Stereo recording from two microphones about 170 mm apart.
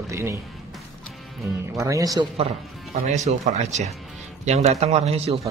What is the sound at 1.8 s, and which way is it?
Speech, 20° right (ahead or behind).